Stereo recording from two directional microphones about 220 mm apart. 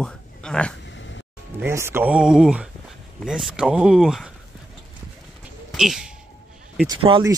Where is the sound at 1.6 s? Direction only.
10° right (ahead or behind).